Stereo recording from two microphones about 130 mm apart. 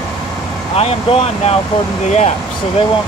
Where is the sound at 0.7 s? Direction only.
50° left (ahead or behind).